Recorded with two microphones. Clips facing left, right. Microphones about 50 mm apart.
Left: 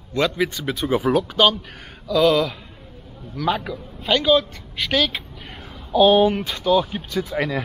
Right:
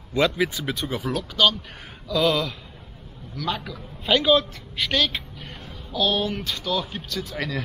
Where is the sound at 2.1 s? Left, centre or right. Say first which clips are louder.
Left 5 dB; centre.